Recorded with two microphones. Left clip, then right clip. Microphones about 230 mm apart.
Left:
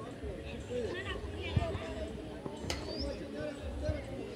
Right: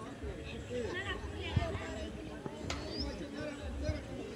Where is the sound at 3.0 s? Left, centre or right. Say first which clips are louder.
Left 2 dB; right.